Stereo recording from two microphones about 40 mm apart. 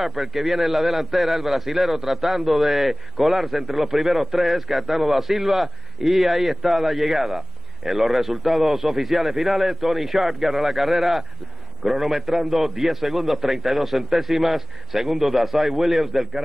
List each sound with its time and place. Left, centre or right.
0.0 s a man's voice: centre